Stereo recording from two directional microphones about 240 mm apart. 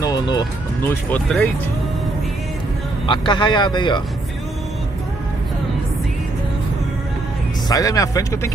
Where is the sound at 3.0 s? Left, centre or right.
Centre.